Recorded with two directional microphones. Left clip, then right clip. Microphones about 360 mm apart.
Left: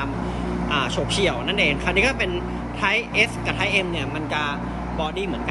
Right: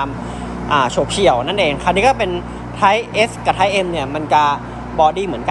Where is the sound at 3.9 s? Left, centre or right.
Centre.